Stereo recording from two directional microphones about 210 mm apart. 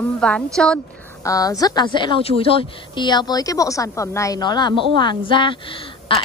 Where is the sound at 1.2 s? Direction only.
15° left (ahead or behind).